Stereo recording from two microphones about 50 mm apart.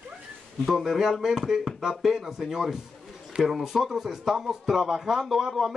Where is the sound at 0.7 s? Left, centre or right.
Centre.